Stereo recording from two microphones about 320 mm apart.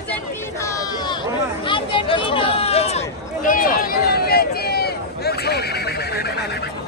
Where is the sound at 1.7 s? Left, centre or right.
Centre.